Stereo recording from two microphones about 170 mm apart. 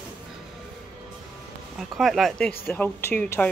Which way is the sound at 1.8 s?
Centre (ahead or behind).